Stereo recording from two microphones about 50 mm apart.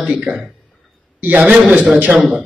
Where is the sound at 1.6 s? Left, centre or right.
Right.